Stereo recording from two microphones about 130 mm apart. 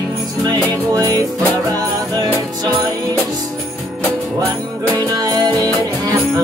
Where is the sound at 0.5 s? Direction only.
30° right (ahead or behind).